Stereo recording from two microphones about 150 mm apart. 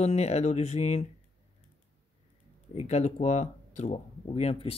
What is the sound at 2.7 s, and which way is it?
Speech, 45° left (ahead or behind).